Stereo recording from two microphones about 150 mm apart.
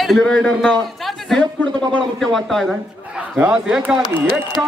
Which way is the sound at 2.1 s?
Centre (ahead or behind).